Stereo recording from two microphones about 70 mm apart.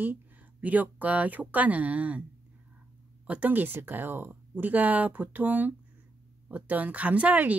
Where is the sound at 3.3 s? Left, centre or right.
Right.